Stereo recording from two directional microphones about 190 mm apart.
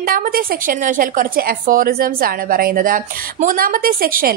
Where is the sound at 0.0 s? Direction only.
50° right (ahead or behind).